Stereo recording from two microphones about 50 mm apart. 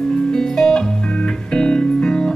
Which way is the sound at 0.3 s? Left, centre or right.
Centre.